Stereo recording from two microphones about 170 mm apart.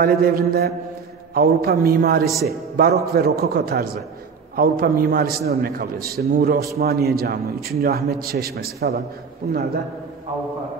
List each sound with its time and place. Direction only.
0.0 s a man's voice: 65° right (ahead or behind)
2.2 s a man's voice: centre (ahead or behind)
2.8 s a man's voice: 65° right (ahead or behind)